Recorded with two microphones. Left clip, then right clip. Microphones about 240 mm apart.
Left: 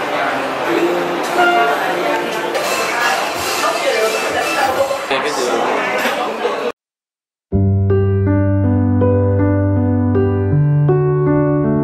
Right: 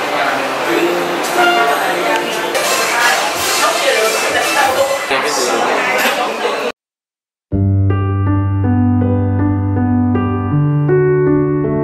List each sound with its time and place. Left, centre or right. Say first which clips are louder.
0.2 s music: right 2 dB; centre
2.7 s a sound: right 4 dB; centre
11.0 s music: right 5 dB; left